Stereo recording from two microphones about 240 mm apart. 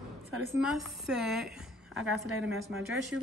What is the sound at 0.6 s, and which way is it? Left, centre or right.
A woman's voice, centre.